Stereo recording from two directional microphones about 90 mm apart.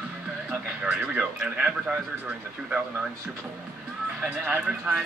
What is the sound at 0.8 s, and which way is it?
Speech, 15° right (ahead or behind).